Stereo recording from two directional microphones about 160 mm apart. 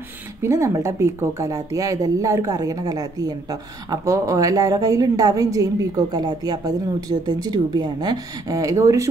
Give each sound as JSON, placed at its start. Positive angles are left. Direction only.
{"t": 0.4, "sound": "speech", "side_deg": -20}